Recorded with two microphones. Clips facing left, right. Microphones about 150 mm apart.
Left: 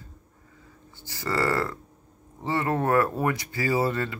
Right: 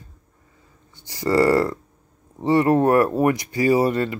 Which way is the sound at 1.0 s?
15° right (ahead or behind).